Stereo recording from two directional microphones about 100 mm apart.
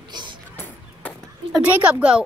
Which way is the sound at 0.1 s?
50° right (ahead or behind).